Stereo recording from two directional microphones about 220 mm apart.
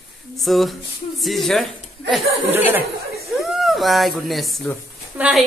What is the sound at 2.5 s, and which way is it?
Speech, 10° right (ahead or behind).